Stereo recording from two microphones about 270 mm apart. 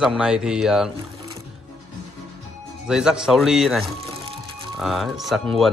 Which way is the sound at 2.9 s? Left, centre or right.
Centre.